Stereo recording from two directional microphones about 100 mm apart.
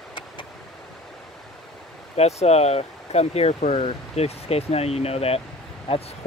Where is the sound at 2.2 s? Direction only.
90° left.